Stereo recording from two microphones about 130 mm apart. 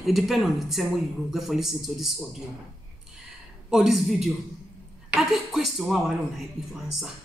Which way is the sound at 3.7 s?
Centre (ahead or behind).